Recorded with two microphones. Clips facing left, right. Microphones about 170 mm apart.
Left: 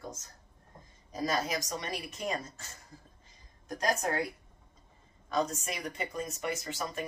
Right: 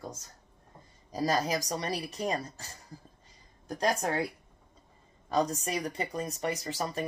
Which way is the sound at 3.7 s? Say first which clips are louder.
Right 2 dB; 30° right (ahead or behind).